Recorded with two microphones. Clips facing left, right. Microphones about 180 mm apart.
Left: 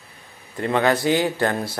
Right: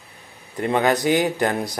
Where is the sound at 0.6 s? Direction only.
20° right (ahead or behind).